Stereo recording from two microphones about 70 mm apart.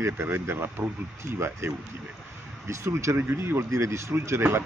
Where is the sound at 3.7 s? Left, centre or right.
Right.